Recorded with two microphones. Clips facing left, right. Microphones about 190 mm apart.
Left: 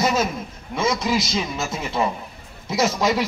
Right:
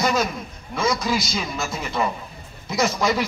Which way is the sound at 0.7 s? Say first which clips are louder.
Left 1 dB; 20° left (ahead or behind).